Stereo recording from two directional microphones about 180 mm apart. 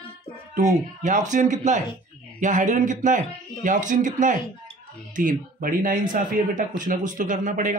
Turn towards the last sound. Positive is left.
turn(degrees=-45)  # may be behind; listen again after turning